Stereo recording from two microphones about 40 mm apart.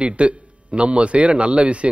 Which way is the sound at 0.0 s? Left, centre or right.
Right.